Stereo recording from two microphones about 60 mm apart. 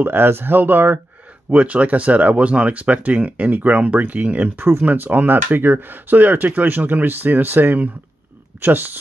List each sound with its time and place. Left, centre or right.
0.0 s speech: right
4.6 s speech: right